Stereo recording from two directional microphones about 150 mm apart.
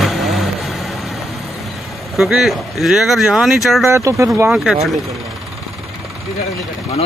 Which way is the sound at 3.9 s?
20° right (ahead or behind).